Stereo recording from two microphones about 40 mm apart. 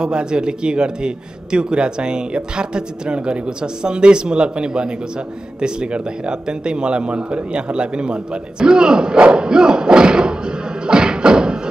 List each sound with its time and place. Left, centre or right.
0.0 s a man's voice: right
10.9 s music: right